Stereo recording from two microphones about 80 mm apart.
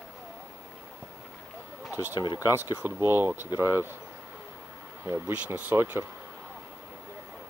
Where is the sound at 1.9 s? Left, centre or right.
Right.